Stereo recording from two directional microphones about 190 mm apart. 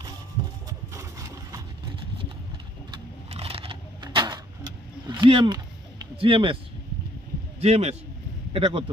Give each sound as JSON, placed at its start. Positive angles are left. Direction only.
{"t": 0.7, "sound": "horse", "side_deg": -15}
{"t": 2.9, "sound": "a sound", "side_deg": -30}
{"t": 7.6, "sound": "a man's voice", "side_deg": -35}